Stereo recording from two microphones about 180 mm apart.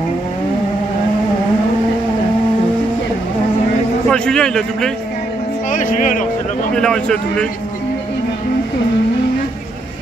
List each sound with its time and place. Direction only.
4.1 s a man's voice: 5° left (ahead or behind)
5.7 s speech: 45° left (ahead or behind)
6.7 s a man's voice: 5° left (ahead or behind)